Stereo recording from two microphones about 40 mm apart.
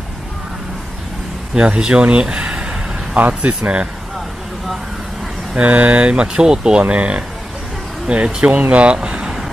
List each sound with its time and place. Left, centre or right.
1.5 s speech: right
3.2 s speech: right
5.6 s speech: right; by 6.8 s centre
6.8 s speech: right
8.4 s speech: right
8.9 s speech: right